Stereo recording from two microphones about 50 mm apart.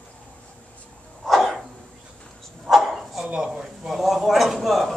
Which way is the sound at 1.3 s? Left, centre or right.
Centre.